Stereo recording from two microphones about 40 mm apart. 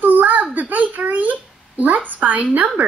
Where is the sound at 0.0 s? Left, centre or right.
Right.